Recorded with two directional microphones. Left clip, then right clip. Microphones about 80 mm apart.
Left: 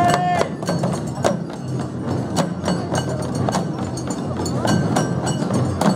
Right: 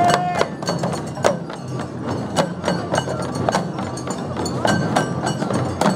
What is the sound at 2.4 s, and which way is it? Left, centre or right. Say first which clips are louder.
Music: right 3 dB; right.